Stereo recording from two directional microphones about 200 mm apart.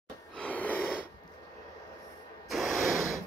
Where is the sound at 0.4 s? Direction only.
5° left (ahead or behind).